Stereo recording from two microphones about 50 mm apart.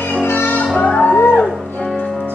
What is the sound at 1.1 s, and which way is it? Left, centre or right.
Music, left.